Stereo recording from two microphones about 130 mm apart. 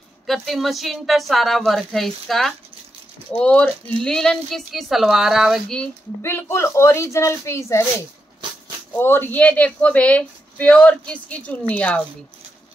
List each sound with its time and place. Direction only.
0.3 s speech: centre (ahead or behind)
6.2 s speech: 20° left (ahead or behind)
8.9 s speech: 15° left (ahead or behind)